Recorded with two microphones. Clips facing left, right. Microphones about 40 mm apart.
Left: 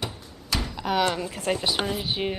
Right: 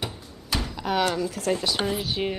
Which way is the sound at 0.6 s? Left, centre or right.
Centre.